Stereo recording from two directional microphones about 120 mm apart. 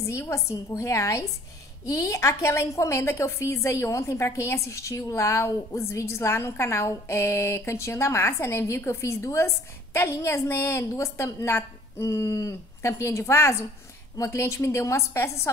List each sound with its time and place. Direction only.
0.0 s a woman's voice: 25° left (ahead or behind)